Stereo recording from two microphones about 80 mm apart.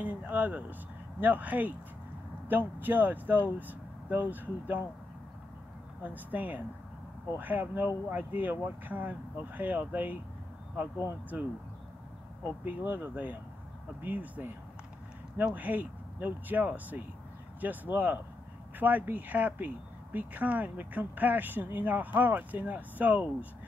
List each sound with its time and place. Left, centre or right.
0.0 s speech: right
6.0 s speech: right
12.6 s speech: right